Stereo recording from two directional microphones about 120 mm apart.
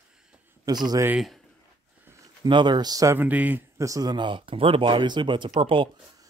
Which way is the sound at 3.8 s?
30° right (ahead or behind).